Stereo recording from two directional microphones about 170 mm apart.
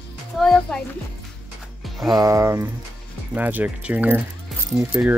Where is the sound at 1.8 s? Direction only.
Centre (ahead or behind).